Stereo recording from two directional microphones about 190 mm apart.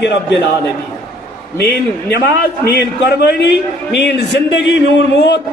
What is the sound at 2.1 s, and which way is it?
A man's voice, 60° left (ahead or behind).